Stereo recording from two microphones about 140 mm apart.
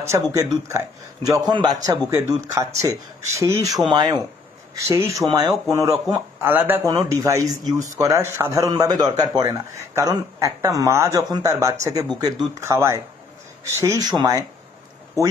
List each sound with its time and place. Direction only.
0.0 s speech: 20° right (ahead or behind)
6.4 s speech: 15° right (ahead or behind)
6.9 s speech: 25° right (ahead or behind)